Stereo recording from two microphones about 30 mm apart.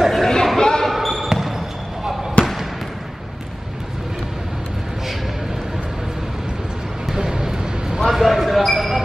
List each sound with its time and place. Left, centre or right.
0.0 s a sound: centre
0.6 s basketball bounce: left
0.8 s basketball bounce: centre
2.4 s basketball bounce: left
7.1 s vehicle: centre
8.1 s a sound: centre